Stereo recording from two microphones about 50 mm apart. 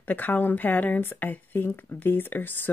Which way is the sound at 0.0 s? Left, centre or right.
Left.